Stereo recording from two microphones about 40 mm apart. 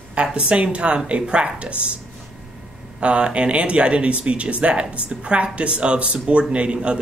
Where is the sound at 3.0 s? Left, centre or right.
Right.